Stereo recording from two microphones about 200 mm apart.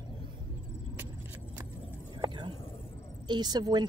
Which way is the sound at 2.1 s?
25° right (ahead or behind).